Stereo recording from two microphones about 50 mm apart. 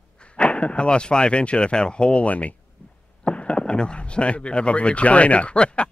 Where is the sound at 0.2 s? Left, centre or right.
Left.